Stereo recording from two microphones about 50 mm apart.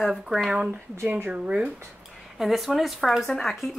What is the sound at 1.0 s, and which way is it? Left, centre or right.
Speech, right.